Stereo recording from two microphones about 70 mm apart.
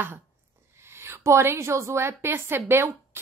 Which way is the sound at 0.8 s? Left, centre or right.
Right.